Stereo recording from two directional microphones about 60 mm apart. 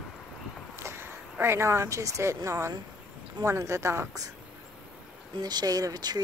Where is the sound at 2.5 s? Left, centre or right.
Right.